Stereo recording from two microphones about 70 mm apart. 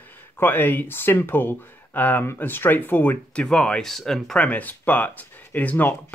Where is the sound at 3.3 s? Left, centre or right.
Centre.